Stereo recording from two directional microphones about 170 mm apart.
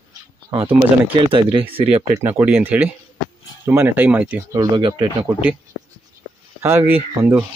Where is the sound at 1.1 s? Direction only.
30° right (ahead or behind).